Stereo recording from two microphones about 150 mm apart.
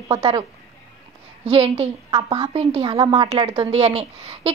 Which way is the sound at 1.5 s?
40° right (ahead or behind).